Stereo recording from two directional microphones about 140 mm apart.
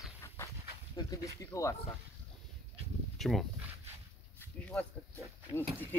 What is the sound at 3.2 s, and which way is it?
Speech, centre (ahead or behind).